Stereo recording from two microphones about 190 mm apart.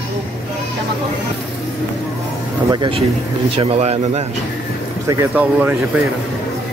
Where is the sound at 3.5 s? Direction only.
30° right (ahead or behind).